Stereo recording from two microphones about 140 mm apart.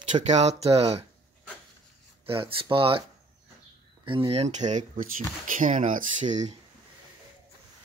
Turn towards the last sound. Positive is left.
turn(degrees=-60)  # may be behind; listen again after turning